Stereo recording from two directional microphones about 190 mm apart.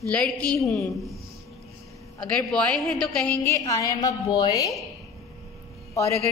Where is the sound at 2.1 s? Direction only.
5° left (ahead or behind).